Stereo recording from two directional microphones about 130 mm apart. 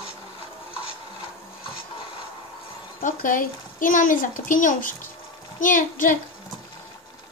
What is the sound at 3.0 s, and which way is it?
A woman's voice, 90° left.